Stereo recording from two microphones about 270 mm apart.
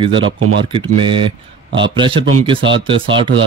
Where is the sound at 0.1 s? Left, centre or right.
Right.